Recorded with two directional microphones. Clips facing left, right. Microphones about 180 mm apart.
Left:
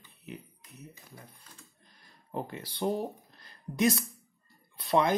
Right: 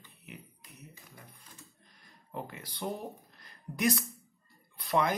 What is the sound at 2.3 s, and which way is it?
A woman's voice, 35° left (ahead or behind).